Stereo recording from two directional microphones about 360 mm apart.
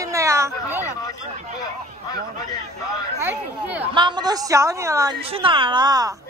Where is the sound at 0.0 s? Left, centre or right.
Centre.